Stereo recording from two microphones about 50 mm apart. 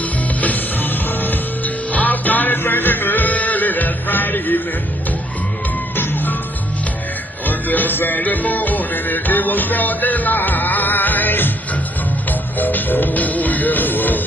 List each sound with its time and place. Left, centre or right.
0.4 s music: left
5.9 s music: left
7.4 s music: left